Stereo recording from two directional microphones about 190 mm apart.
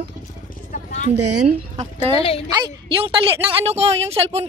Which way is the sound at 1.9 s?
25° right (ahead or behind).